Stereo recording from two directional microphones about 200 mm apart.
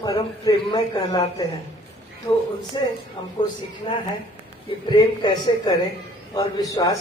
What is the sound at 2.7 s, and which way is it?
Speech, 25° left (ahead or behind).